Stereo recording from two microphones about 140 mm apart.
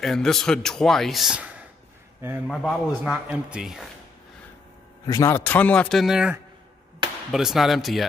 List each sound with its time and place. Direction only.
0.0 s speech: 5° left (ahead or behind)
5.0 s a man's voice: 30° left (ahead or behind)
5.3 s speech: 15° left (ahead or behind)